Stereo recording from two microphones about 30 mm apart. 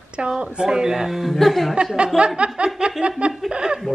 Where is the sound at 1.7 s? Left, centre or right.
Right.